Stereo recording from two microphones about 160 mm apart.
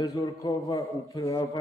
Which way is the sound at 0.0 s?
20° left (ahead or behind).